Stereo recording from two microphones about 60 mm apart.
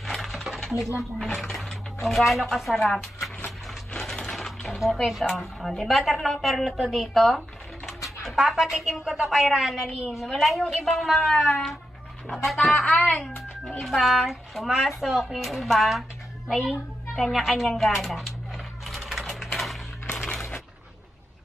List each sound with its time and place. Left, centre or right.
0.0 s coin: centre
1.4 s speech: centre
3.9 s a sound: centre
5.2 s a woman's voice: centre
13.7 s a woman's voice: centre
18.9 s sewing machine: centre